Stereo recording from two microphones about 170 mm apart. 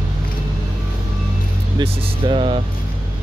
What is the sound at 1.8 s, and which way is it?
Music, 30° right (ahead or behind).